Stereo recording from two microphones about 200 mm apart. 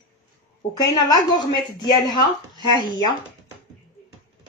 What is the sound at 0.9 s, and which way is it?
Speech, 20° left (ahead or behind).